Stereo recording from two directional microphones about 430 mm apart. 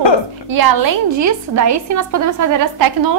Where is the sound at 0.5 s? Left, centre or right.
Right.